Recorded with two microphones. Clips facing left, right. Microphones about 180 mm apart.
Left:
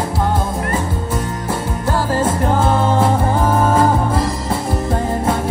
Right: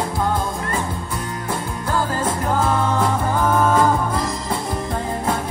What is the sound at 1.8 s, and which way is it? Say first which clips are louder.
Music: left 4 dB; 25° left (ahead or behind).